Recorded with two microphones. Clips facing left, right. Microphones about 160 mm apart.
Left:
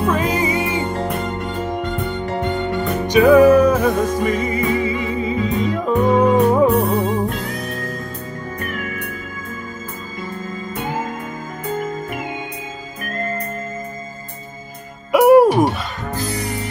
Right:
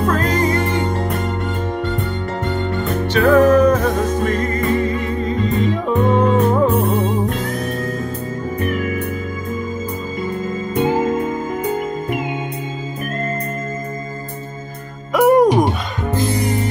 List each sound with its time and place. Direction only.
0.0 s music: 10° left (ahead or behind)
10.7 s music: 20° right (ahead or behind)
15.1 s hoot: 10° left (ahead or behind)
16.2 s music: 25° right (ahead or behind)